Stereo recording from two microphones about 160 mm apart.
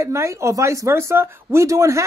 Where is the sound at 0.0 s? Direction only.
20° right (ahead or behind).